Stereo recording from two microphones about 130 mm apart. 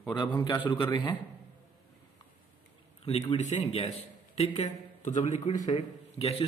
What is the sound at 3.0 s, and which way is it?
A man's voice, 45° left (ahead or behind).